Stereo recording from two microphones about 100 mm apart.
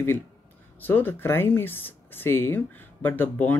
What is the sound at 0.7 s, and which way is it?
Speech, 20° left (ahead or behind).